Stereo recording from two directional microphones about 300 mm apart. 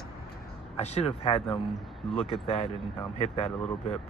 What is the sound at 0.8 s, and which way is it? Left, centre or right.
Speech, left.